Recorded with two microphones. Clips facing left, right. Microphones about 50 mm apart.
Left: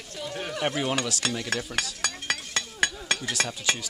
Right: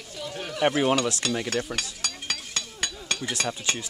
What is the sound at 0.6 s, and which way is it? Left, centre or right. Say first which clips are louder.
Speech: right 6 dB; centre.